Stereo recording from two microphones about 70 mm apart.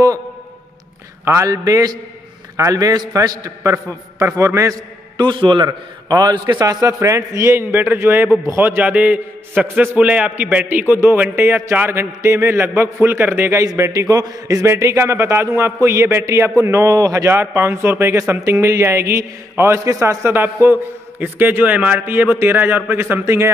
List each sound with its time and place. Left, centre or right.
1.2 s a man's voice: right
1.5 s a man's voice: right
5.1 s a man's voice: right
6.6 s a man's voice: right
7.7 s a man's voice: right
8.8 s a man's voice: right
13.9 s a man's voice: right
14.6 s speech: right
17.3 s speech: right
19.8 s a man's voice: right
20.2 s a man's voice: right